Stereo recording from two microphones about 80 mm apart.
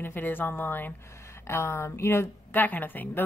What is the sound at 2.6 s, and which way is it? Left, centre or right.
Speech, left.